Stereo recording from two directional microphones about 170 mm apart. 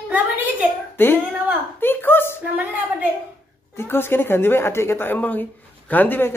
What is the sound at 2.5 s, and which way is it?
Speech, 10° right (ahead or behind).